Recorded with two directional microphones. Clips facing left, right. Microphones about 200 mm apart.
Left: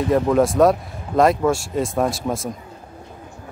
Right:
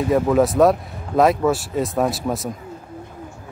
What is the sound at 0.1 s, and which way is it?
Speech, centre (ahead or behind).